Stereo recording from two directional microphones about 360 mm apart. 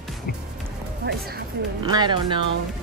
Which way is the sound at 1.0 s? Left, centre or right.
Right.